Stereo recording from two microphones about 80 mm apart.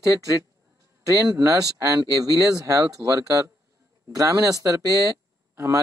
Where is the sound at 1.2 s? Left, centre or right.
Right.